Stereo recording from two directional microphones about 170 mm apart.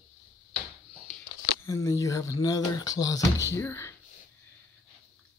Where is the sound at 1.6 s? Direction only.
20° left (ahead or behind).